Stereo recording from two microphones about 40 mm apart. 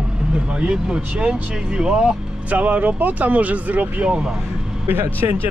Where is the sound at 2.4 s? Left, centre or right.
Right.